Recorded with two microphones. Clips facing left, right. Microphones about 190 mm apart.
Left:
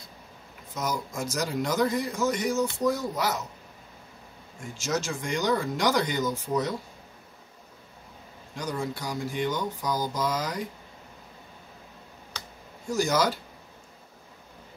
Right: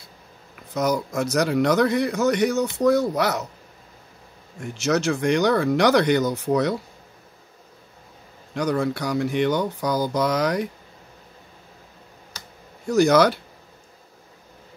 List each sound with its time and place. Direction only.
0.7 s speech: 65° right (ahead or behind)
4.6 s speech: 65° right (ahead or behind)
8.5 s speech: 70° right (ahead or behind)
12.8 s speech: 65° right (ahead or behind)